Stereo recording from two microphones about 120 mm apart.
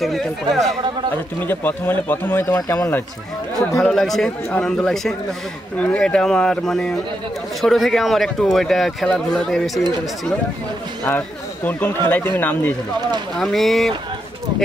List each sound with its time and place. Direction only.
0.0 s a man's voice: centre (ahead or behind)
1.4 s speech: 15° left (ahead or behind)
2.4 s speech: 30° left (ahead or behind)
3.5 s a man's voice: 5° left (ahead or behind)
11.1 s speech: 15° left (ahead or behind)
13.4 s a man's voice: centre (ahead or behind)